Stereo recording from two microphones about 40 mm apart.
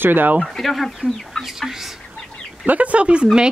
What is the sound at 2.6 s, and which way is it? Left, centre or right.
Speech, right.